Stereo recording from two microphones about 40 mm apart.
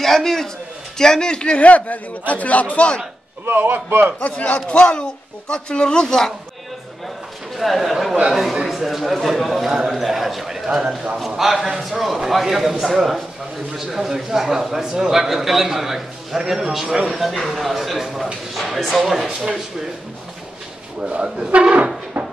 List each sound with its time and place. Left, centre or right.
0.0 s a man's voice: centre
1.6 s a man's voice: left
3.4 s a man's voice: right
4.2 s a man's voice: left; by 6.3 s centre
7.5 s a man's voice: centre
21.0 s speech: right
21.5 s speech: right
22.2 s a sound: right